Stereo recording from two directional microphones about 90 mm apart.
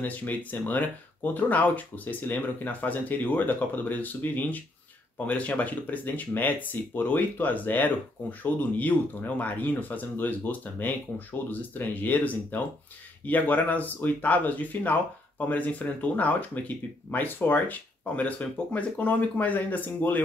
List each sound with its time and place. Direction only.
0.0 s speech: 20° left (ahead or behind)